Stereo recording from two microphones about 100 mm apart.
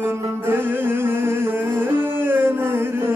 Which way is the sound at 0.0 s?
25° right (ahead or behind).